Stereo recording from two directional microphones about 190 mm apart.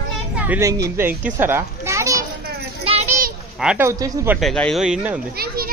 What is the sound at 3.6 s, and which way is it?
Speech, 5° right (ahead or behind).